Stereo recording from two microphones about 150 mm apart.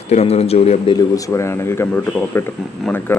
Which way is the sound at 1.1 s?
20° left (ahead or behind).